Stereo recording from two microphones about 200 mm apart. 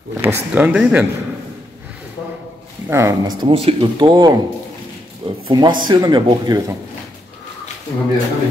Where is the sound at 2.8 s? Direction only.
15° right (ahead or behind).